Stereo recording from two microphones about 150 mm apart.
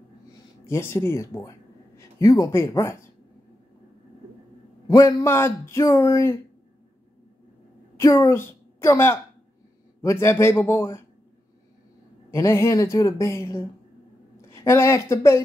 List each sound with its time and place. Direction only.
0.7 s speech: 15° left (ahead or behind)
4.8 s speech: 20° left (ahead or behind)
8.0 s a woman's voice: 20° left (ahead or behind)
12.3 s speech: 20° left (ahead or behind)